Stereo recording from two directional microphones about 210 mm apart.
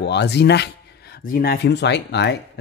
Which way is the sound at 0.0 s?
55° left (ahead or behind).